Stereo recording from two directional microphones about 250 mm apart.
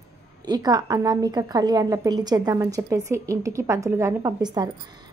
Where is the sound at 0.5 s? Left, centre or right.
Centre.